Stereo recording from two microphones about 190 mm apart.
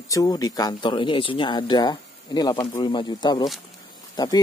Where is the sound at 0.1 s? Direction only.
20° left (ahead or behind).